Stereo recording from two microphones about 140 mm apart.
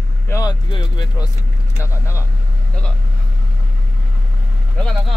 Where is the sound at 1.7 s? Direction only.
20° left (ahead or behind).